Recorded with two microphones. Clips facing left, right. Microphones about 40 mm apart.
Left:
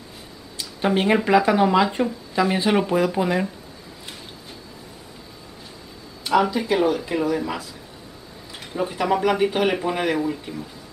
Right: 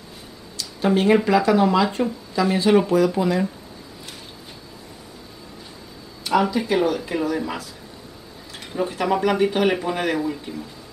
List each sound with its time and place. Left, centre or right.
0.6 s a sound: left
1.0 s speech: centre
6.2 s speech: centre
8.7 s speech: centre